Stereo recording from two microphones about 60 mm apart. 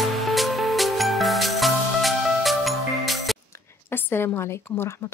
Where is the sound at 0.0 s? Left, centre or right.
Centre.